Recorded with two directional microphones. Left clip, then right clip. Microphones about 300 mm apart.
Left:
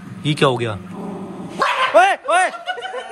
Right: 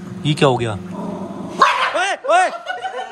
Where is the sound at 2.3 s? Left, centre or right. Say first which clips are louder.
Right 2 dB; centre.